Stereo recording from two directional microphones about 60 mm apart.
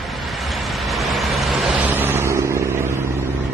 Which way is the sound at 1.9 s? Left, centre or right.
Right.